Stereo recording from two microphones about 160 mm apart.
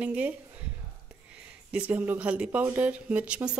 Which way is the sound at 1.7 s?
10° right (ahead or behind).